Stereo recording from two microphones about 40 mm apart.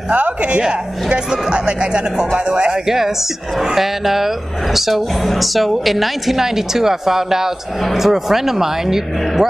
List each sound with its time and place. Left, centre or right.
0.1 s speech: right
0.6 s a man's voice: right
3.5 s speech: centre